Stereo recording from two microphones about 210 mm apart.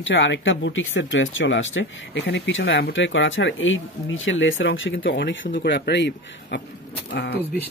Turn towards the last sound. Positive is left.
turn(degrees=55)  # may be behind; listen again after turning